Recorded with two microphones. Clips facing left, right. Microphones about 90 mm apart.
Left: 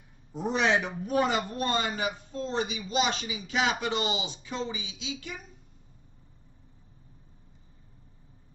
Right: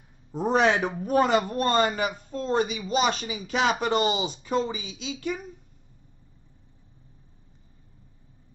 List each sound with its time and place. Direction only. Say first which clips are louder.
0.3 s speech: right 4 dB; 45° right (ahead or behind)